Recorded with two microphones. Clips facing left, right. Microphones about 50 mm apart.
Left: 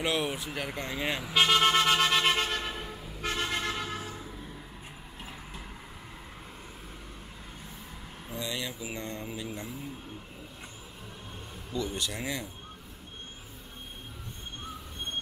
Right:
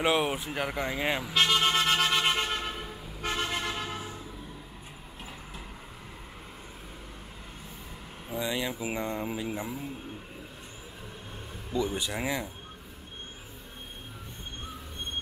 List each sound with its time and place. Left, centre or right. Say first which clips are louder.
0.0 s speech: right 4 dB; centre
1.2 s toot: left 3 dB; centre
8.4 s speech: right 5 dB; centre
11.7 s speech: right 3 dB; centre